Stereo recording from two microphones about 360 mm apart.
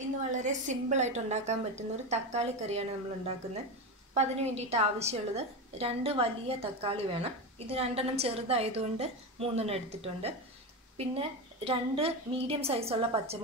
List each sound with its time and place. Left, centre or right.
0.3 s a woman's voice: centre
4.1 s a woman's voice: centre